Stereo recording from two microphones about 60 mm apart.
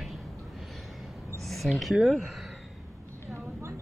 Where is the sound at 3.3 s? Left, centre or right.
Right.